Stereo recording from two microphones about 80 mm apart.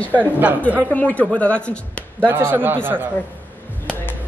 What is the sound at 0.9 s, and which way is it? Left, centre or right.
Speech, centre.